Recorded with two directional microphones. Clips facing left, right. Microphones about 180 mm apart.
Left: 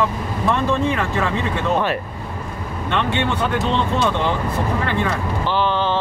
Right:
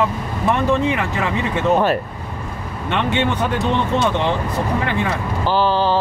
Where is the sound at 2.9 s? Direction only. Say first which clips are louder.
Right 2 dB; 15° right (ahead or behind).